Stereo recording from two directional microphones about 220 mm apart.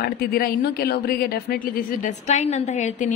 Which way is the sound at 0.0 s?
45° left (ahead or behind).